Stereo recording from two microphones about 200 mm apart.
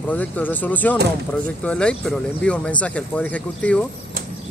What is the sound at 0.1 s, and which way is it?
Speech, 10° left (ahead or behind).